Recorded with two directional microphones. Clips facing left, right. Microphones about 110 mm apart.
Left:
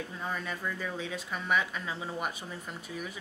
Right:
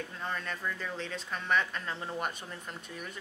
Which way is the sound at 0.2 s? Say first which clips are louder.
Left 1 dB; 5° left (ahead or behind).